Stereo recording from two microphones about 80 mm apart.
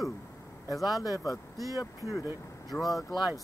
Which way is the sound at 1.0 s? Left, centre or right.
Left.